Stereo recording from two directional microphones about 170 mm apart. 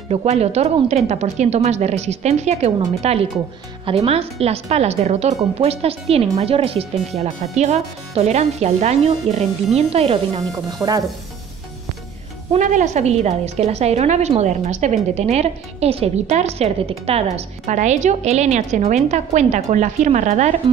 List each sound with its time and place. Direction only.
0.1 s a woman's voice: 40° right (ahead or behind)
10.8 s speech: 20° right (ahead or behind)
12.5 s a woman's voice: 45° right (ahead or behind)